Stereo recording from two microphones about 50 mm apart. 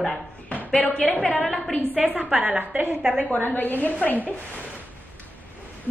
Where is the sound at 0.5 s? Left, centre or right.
Left.